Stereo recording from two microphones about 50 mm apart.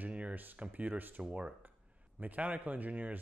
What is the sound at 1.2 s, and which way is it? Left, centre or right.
Speech, right.